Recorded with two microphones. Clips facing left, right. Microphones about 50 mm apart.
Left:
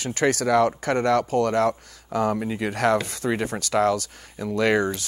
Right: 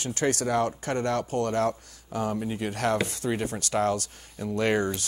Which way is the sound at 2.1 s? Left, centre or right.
Left.